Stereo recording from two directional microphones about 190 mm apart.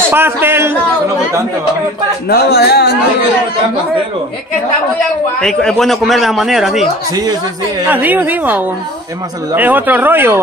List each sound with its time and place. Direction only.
0.1 s speech: 10° right (ahead or behind)
2.2 s speech: 60° left (ahead or behind)
5.4 s a man's voice: 5° left (ahead or behind)
7.9 s speech: 10° right (ahead or behind)